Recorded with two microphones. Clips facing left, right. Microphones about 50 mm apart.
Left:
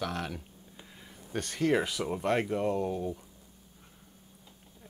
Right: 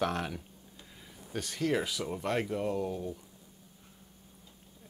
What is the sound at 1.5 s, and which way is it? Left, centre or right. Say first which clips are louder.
Speech: left 3 dB; centre.